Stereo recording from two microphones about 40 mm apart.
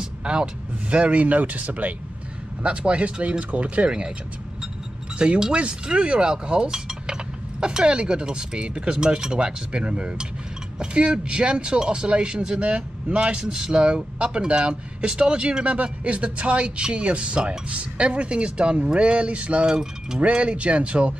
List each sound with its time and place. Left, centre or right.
0.0 s speech: right
2.6 s speech: right
5.5 s speech: right
19.7 s mechanisms: centre
20.2 s speech: right